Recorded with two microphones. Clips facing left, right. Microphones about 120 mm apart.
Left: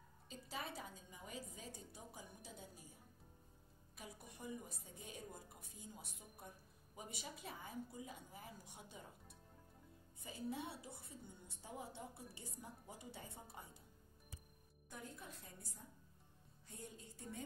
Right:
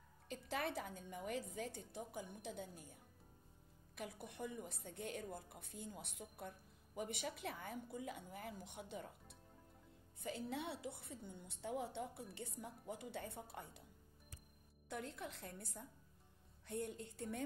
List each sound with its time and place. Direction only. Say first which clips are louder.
0.3 s a woman's voice: right 6 dB; 65° right (ahead or behind)
3.9 s a woman's voice: right 6 dB; 65° right (ahead or behind)
14.9 s a woman's voice: right 6 dB; 75° right (ahead or behind)